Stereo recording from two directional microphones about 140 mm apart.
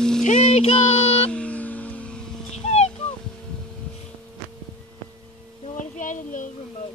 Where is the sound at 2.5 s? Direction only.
50° left (ahead or behind).